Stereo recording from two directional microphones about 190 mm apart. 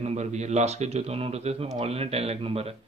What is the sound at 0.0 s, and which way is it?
Speech, 35° right (ahead or behind).